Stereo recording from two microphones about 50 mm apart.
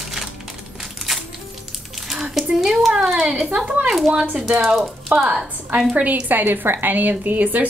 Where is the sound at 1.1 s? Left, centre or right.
Centre.